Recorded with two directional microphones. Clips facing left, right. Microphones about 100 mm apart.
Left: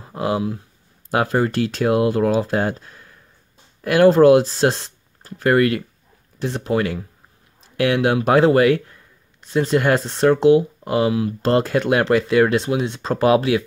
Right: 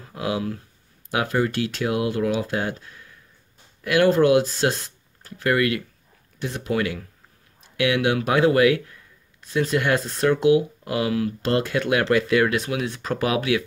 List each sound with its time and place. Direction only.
0.0 s a sound: 30° left (ahead or behind)
1.1 s speech: 35° left (ahead or behind)
11.4 s speech: 35° left (ahead or behind)